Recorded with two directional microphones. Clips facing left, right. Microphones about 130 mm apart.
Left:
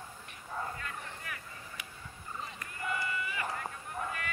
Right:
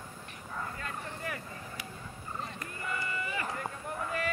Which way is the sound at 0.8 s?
35° right (ahead or behind).